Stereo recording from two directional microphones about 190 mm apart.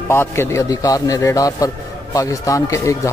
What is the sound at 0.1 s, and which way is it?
Speech, 15° left (ahead or behind).